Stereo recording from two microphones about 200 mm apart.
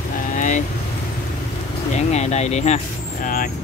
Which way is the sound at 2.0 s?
35° left (ahead or behind).